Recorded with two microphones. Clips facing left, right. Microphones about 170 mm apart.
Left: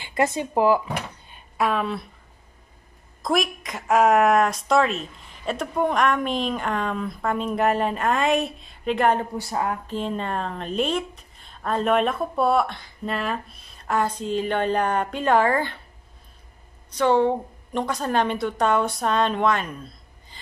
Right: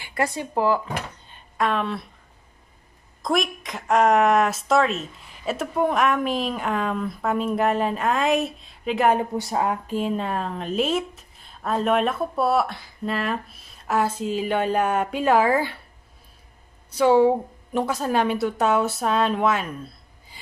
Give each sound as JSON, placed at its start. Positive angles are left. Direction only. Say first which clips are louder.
{"t": 0.0, "sound": "speech", "louder": "left 3 dB", "side_deg": 20}
{"t": 1.3, "sound": "a sound", "louder": "even", "side_deg": 5}
{"t": 3.2, "sound": "speech", "louder": "even", "side_deg": 0}
{"t": 9.4, "sound": "speech", "louder": "right 2 dB", "side_deg": -20}
{"t": 9.9, "sound": "speech", "louder": "right 2 dB", "side_deg": -5}
{"t": 16.9, "sound": "speech", "louder": "right 3 dB", "side_deg": -5}